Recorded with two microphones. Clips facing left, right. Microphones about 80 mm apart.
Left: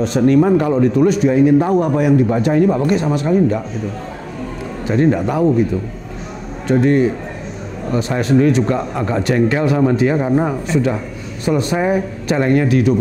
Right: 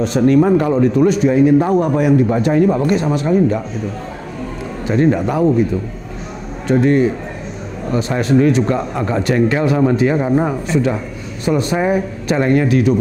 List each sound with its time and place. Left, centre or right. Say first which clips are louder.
0.0 s speech: even; centre
0.4 s speech: even; right
1.0 s speech: even; centre
4.8 s speech: even; right
6.7 s speech: even; centre
8.2 s speech: even; centre